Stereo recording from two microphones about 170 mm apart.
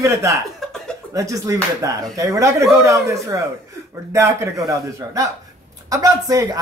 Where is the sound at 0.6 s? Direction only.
Centre (ahead or behind).